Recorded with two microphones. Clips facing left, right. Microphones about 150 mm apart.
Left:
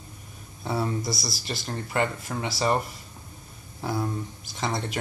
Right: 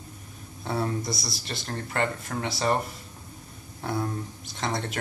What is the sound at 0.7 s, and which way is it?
Speech, 5° left (ahead or behind).